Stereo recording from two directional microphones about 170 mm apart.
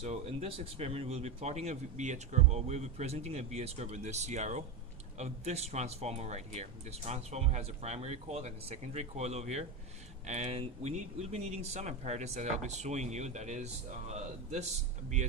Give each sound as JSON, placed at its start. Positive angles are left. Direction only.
{"t": 0.0, "sound": "a man's voice", "side_deg": -40}